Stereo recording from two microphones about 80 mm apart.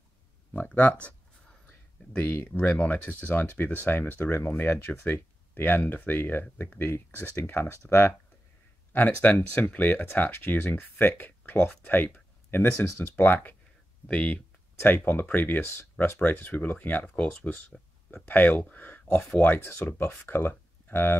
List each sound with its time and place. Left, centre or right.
0.5 s speech: centre
2.1 s speech: centre
8.9 s speech: left